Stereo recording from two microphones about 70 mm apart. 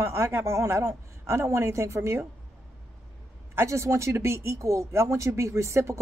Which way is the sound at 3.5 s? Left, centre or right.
Right.